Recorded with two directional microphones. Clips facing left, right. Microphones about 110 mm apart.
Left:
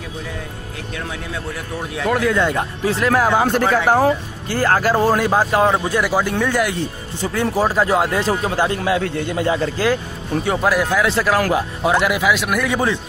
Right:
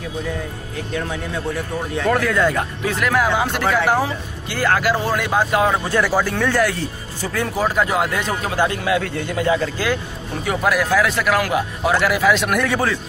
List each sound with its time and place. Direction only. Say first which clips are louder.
2.1 s speech: left 3 dB; 25° left (ahead or behind)
5.9 s speech: even; 15° left (ahead or behind); by 11.9 s 30° left (ahead or behind)
11.9 s speech: even; 20° left (ahead or behind)
12.3 s speech: right 1 dB; 5° left (ahead or behind)
12.6 s a man's voice: left 1 dB; 15° left (ahead or behind)